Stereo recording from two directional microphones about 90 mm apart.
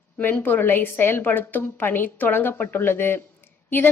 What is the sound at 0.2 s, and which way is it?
A woman's voice, 20° left (ahead or behind).